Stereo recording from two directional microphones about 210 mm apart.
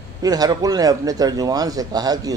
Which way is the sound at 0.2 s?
20° right (ahead or behind).